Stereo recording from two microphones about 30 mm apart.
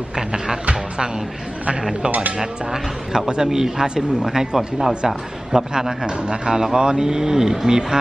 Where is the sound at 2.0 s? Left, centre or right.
Right.